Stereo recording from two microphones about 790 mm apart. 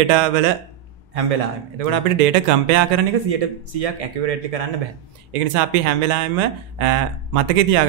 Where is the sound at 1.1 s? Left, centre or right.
Right.